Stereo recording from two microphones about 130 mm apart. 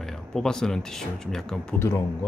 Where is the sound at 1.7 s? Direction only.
20° left (ahead or behind).